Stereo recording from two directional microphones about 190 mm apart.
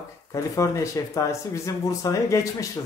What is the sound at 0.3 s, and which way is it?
Speech, 15° left (ahead or behind).